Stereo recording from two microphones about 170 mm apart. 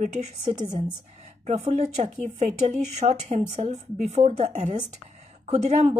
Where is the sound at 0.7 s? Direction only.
25° right (ahead or behind).